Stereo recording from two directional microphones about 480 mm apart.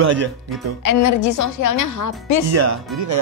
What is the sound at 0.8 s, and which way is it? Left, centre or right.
A woman's voice, left.